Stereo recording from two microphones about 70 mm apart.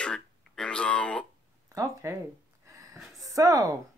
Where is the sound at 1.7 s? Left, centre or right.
Right.